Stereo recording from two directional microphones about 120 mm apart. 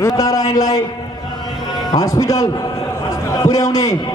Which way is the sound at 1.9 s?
30° left (ahead or behind).